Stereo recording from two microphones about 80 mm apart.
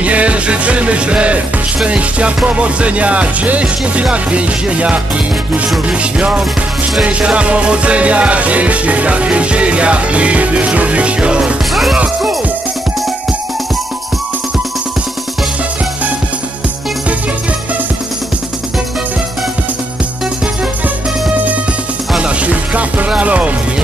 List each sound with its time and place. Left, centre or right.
0.0 s music: centre
11.7 s music: centre
22.1 s music: centre